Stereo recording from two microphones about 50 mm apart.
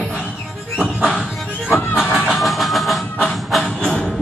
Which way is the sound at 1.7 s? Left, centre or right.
Left.